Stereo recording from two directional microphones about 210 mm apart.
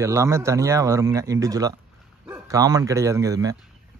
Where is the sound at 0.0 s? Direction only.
15° right (ahead or behind).